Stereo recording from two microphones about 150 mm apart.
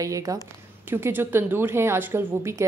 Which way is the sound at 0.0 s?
20° right (ahead or behind).